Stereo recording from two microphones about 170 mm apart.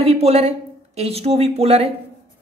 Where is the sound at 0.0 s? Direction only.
35° right (ahead or behind).